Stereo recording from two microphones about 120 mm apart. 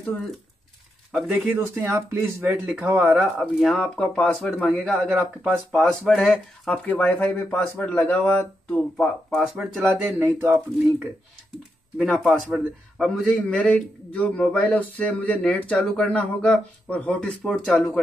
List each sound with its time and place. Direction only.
1.1 s speech: 5° right (ahead or behind)
3.2 s a man's voice: centre (ahead or behind)
10.1 s speech: 20° right (ahead or behind)
12.0 s a man's voice: centre (ahead or behind)